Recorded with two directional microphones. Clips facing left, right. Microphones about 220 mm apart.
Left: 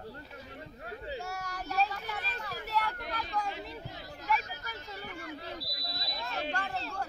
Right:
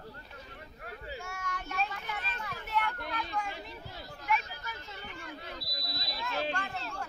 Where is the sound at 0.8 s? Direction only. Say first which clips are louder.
Left 3 dB; 30° left (ahead or behind).